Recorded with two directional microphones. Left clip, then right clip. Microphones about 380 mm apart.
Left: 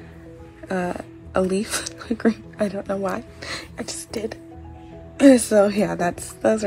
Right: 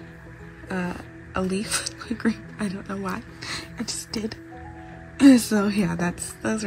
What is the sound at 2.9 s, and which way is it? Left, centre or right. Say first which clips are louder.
Speech: left 6 dB; left.